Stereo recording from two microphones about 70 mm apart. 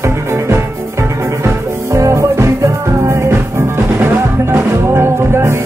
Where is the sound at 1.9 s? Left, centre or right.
Right.